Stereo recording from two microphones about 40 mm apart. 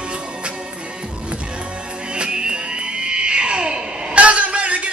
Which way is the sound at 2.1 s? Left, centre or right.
Right.